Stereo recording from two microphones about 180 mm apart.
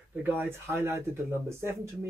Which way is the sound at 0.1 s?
10° right (ahead or behind).